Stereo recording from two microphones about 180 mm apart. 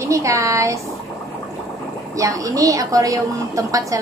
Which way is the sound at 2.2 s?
20° right (ahead or behind).